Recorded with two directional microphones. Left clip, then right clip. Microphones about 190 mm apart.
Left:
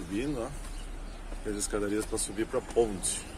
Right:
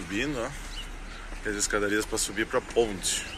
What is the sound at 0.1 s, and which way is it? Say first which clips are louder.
Speech: right 4 dB; 5° left (ahead or behind).